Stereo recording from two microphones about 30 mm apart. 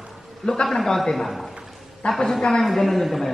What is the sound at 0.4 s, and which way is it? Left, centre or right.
Speech, left.